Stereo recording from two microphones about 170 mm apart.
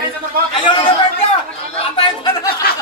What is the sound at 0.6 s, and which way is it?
Speech, 25° left (ahead or behind).